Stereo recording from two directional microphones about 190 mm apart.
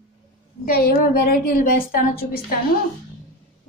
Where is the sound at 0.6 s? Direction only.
50° left (ahead or behind).